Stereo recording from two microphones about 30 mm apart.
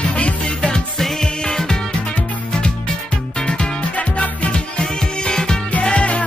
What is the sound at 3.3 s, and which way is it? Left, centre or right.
Music, left.